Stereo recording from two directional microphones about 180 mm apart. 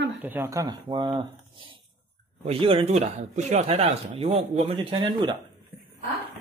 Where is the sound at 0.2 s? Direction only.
10° right (ahead or behind); by 5.3 s 25° right (ahead or behind).